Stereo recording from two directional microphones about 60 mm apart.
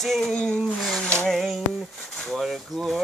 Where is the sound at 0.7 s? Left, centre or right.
Centre.